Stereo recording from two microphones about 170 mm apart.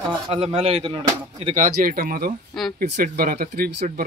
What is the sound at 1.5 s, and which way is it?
Speech, 50° right (ahead or behind).